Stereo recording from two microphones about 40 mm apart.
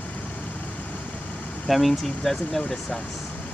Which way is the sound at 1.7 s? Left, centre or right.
Centre.